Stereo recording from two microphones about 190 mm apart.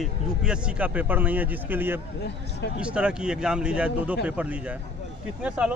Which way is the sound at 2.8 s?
5° right (ahead or behind).